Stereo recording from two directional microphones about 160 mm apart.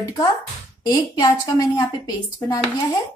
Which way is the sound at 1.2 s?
25° left (ahead or behind).